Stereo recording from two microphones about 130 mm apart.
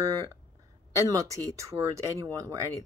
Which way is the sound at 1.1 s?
25° right (ahead or behind).